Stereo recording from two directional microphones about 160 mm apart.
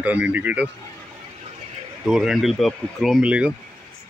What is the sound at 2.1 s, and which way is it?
Speech, centre (ahead or behind).